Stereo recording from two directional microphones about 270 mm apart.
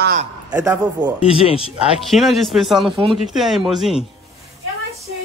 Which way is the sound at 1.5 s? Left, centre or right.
Left.